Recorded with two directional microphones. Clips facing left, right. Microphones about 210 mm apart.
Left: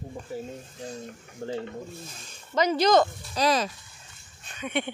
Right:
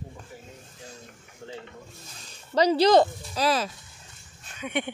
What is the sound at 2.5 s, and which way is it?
Speech, 35° right (ahead or behind).